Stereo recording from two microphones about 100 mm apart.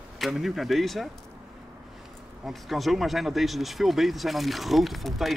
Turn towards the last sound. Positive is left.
turn(degrees=0)  # may be behind; listen again after turning